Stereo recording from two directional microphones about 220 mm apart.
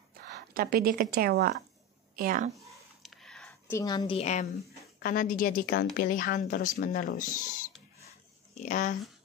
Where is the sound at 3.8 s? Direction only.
20° left (ahead or behind).